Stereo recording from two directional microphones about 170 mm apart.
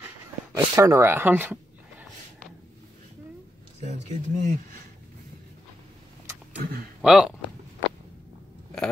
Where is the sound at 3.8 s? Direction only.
45° right (ahead or behind).